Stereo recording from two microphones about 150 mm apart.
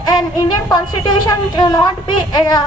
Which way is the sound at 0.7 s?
25° left (ahead or behind).